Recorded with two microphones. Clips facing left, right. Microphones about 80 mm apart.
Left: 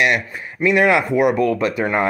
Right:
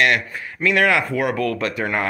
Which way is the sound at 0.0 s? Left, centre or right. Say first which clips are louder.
Even; centre.